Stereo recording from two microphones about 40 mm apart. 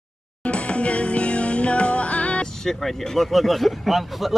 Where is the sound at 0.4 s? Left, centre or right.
Left.